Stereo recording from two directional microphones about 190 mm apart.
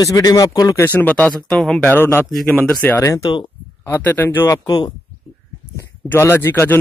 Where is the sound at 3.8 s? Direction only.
10° left (ahead or behind).